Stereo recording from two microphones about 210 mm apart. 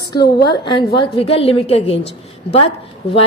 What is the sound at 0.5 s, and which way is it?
A woman's voice, 25° left (ahead or behind).